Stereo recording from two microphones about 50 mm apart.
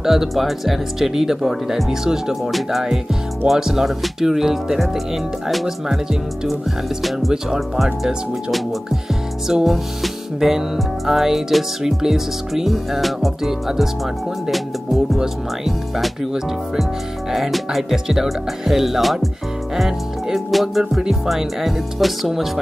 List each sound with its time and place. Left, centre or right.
0.0 s music: centre
5.5 s speech: centre
7.0 s speech: centre
7.5 s music: centre
9.5 s music: centre
15.1 s speech: centre
17.3 s speech: centre
19.8 s music: centre
21.0 s speech: centre